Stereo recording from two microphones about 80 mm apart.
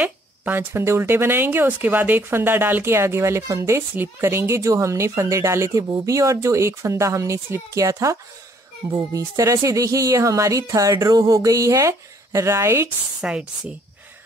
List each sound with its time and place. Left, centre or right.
0.5 s speech: right
13.2 s speech: centre